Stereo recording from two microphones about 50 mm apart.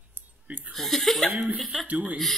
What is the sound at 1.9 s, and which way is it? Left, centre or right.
Speech, right.